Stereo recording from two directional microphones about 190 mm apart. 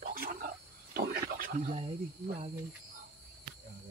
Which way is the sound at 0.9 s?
50° right (ahead or behind).